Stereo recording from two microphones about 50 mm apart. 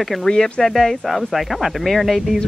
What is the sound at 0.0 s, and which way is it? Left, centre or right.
Speech, centre.